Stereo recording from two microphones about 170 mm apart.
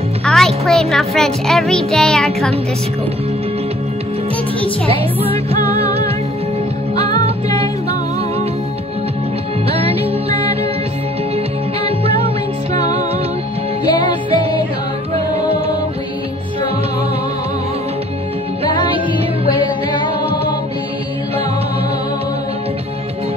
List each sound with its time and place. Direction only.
0.2 s a child's voice: 5° left (ahead or behind)
4.8 s music: 35° right (ahead or behind)
9.7 s music: 35° right (ahead or behind)
13.8 s music: 25° left (ahead or behind)